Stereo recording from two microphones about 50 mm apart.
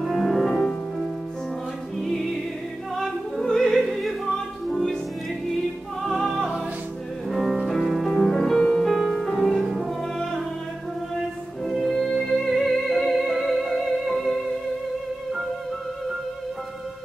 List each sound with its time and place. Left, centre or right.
0.0 s music: centre
3.0 s opera: centre
3.9 s music: centre
6.0 s music: centre
8.5 s music: centre
9.0 s music: centre
11.6 s music: centre